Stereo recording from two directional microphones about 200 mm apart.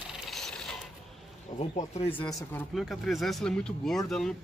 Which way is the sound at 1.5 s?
35° left (ahead or behind).